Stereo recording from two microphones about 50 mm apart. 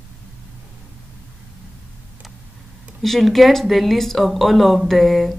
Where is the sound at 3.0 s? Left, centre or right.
Centre.